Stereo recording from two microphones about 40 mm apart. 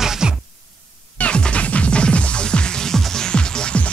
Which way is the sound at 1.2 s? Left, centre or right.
Left.